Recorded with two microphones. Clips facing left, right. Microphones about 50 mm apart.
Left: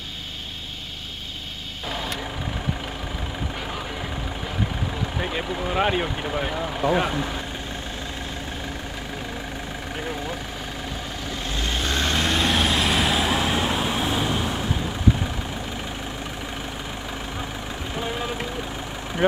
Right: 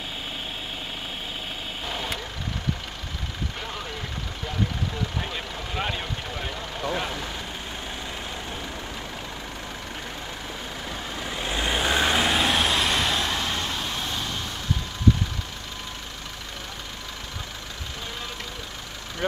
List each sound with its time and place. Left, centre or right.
5.2 s speech: centre
11.4 s vehicle: centre
17.9 s vehicle: centre